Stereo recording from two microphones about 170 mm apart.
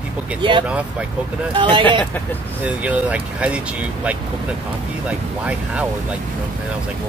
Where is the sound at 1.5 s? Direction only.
30° right (ahead or behind).